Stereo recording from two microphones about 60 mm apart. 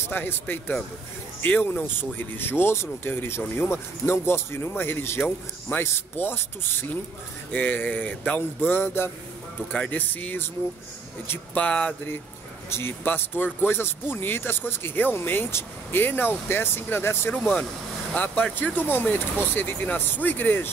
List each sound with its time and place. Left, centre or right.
0.0 s speech: left
9.7 s speech: left
11.5 s speech: centre
12.6 s speech: left
17.3 s speech: left